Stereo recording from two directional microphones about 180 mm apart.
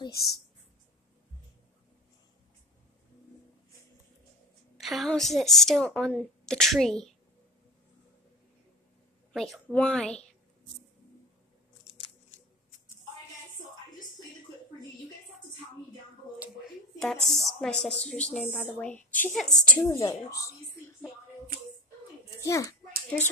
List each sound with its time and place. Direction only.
4.7 s a woman's voice: centre (ahead or behind)
9.3 s a woman's voice: centre (ahead or behind)
17.0 s a woman's voice: centre (ahead or behind)
19.9 s a woman's voice: 15° left (ahead or behind)
22.4 s a child's voice: 15° left (ahead or behind)